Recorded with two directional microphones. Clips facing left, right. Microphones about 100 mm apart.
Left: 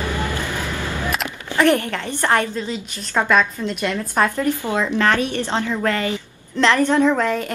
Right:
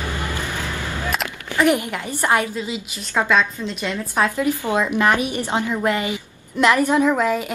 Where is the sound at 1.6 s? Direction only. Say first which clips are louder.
Left 1 dB; 10° right (ahead or behind).